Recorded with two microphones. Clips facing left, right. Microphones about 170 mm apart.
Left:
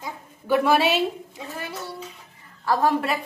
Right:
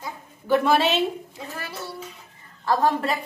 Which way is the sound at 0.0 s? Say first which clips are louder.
Even; 10° left (ahead or behind).